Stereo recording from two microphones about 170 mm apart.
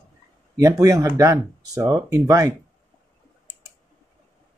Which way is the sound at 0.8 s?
15° right (ahead or behind).